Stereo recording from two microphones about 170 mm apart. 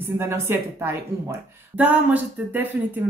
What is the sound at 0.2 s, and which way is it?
A woman's voice, 15° right (ahead or behind).